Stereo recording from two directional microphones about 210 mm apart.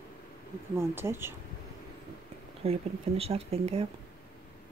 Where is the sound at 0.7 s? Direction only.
10° right (ahead or behind).